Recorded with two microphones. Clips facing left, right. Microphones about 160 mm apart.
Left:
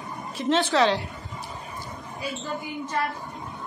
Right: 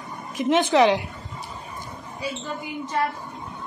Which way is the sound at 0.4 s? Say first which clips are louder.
Right 4 dB; 15° right (ahead or behind).